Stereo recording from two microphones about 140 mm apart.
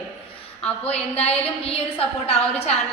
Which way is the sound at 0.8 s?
50° left (ahead or behind).